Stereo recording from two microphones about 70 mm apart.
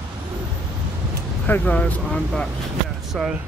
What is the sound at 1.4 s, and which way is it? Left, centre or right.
Speech, left.